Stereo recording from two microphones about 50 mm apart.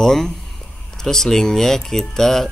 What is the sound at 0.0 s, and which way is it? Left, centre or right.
Speech, centre.